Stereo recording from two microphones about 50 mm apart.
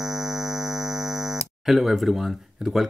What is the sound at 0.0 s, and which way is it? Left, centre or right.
Speech, centre.